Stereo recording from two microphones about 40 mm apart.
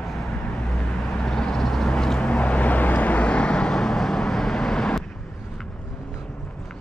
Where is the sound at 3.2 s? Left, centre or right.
Left.